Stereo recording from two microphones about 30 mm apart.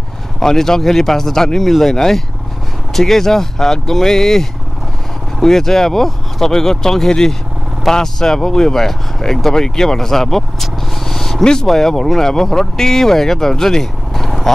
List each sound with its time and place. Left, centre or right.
0.4 s speech: centre